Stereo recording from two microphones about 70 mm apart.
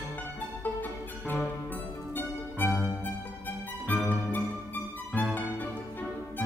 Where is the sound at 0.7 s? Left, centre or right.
Left.